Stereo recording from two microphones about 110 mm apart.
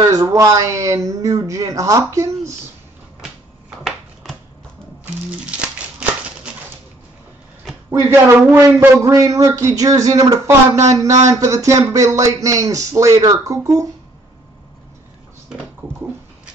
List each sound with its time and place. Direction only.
0.0 s speech: 30° right (ahead or behind)
3.8 s a sound: 5° left (ahead or behind)
7.9 s speech: 20° right (ahead or behind)